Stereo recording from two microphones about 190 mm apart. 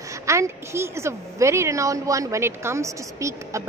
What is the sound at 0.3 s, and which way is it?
A woman's voice, 15° right (ahead or behind).